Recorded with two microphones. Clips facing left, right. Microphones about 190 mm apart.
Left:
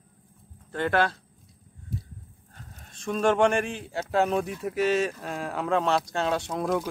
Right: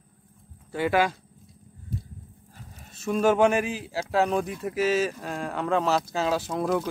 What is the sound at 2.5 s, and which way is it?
Speech, 5° right (ahead or behind).